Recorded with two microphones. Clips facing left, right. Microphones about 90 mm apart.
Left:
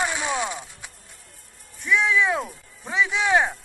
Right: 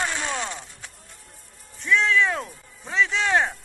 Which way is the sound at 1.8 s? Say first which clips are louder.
Even; 10° left (ahead or behind).